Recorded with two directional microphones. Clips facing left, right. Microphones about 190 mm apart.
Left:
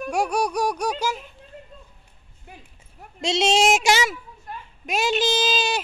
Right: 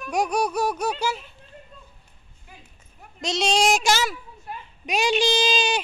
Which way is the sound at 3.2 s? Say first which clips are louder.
Left 2 dB; 25° left (ahead or behind).